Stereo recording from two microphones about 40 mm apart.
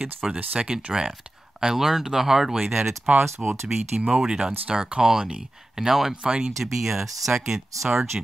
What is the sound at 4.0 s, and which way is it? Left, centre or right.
Speech, right.